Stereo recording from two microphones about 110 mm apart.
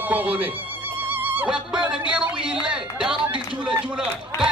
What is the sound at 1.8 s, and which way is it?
Speech, 10° right (ahead or behind).